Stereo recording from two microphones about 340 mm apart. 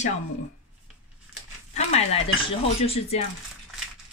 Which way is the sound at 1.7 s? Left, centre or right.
Centre.